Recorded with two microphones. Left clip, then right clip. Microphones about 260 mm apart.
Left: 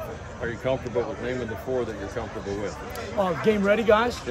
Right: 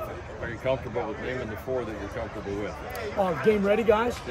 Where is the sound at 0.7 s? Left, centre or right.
Left.